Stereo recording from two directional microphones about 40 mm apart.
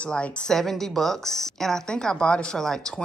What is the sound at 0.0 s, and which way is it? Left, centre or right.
Speech, left.